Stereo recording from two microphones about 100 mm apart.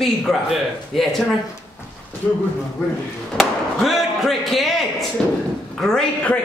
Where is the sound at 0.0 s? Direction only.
Centre (ahead or behind).